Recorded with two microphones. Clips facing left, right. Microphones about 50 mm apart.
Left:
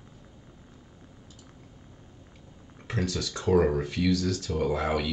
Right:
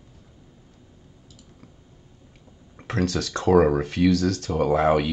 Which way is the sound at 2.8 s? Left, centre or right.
Right.